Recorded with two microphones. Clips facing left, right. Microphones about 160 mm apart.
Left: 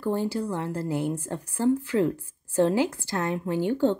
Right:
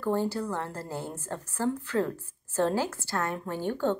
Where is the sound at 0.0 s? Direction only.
15° left (ahead or behind).